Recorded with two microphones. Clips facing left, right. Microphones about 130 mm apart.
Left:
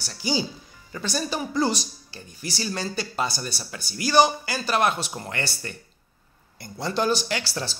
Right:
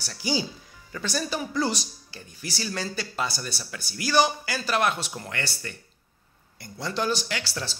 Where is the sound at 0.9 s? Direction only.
20° left (ahead or behind).